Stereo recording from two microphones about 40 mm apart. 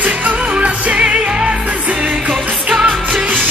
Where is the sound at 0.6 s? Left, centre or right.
Right.